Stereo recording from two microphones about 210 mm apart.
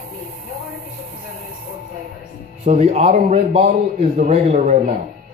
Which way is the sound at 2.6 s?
30° right (ahead or behind).